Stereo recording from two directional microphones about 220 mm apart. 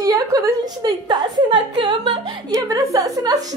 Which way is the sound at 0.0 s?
15° right (ahead or behind).